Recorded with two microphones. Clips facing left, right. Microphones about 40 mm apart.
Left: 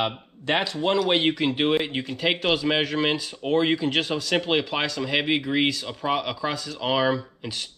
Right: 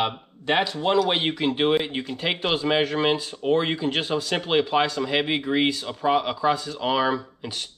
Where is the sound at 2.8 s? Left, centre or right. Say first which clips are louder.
Right 1 dB; centre.